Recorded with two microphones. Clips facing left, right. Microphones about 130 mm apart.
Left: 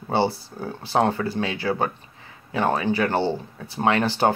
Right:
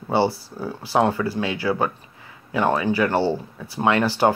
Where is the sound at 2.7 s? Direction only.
25° left (ahead or behind).